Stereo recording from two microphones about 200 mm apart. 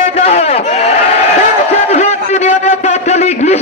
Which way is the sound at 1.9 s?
35° left (ahead or behind).